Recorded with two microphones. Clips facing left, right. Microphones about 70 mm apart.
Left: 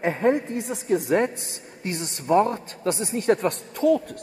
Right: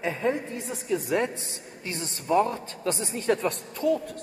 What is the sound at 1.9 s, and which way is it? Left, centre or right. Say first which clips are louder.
A man's voice: left 3 dB; left.